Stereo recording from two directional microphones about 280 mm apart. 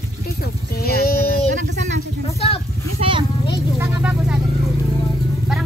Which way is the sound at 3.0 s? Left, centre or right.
Right.